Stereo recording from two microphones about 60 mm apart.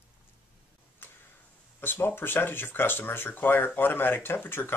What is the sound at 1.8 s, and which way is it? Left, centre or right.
Speech, left.